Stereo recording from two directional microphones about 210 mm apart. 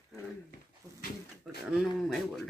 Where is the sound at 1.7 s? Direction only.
Centre (ahead or behind).